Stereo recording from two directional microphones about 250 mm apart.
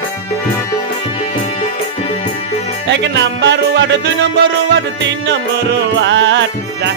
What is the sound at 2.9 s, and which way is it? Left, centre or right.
Music, right.